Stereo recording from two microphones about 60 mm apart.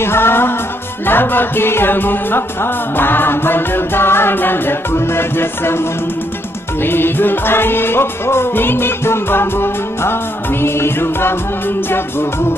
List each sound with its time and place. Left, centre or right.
0.0 s music: left
6.8 s music: left